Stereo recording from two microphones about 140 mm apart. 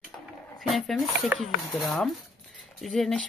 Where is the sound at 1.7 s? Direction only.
Centre (ahead or behind).